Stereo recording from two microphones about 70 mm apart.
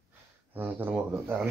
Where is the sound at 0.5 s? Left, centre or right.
Right.